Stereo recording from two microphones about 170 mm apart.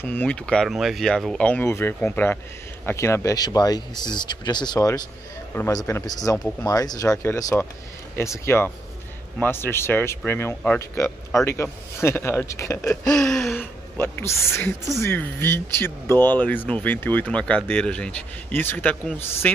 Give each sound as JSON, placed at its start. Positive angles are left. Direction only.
{"t": 0.0, "sound": "speech", "side_deg": 10}
{"t": 12.8, "sound": "a sound", "side_deg": 5}
{"t": 13.6, "sound": "speech", "side_deg": 10}